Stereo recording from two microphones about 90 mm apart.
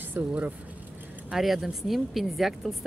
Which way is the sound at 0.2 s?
20° right (ahead or behind).